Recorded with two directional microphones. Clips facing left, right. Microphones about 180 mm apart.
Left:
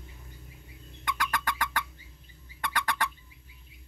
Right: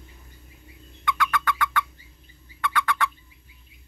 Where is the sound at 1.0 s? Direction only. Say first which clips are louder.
Right 6 dB; 40° left (ahead or behind).